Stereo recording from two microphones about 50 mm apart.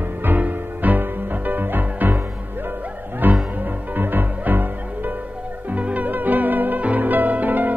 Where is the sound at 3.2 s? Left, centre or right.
Right.